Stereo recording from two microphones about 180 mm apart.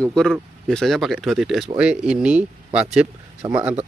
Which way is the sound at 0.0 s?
5° left (ahead or behind).